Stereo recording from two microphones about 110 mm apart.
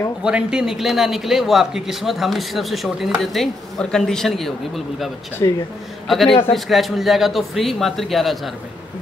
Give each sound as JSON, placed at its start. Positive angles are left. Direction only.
{"t": 0.2, "sound": "speech", "side_deg": -10}
{"t": 5.4, "sound": "speech", "side_deg": 35}
{"t": 6.0, "sound": "a man's voice", "side_deg": 0}